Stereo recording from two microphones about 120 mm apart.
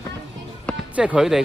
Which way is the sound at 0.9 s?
5° right (ahead or behind).